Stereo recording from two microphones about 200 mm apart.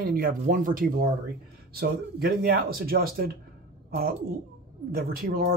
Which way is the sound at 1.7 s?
50° right (ahead or behind).